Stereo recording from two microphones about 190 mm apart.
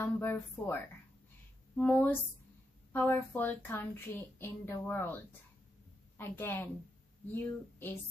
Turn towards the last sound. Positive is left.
turn(degrees=10)  # may be behind; listen again after turning